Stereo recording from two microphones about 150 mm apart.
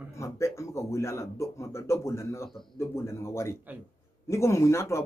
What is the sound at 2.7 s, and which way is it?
Speech, 20° left (ahead or behind).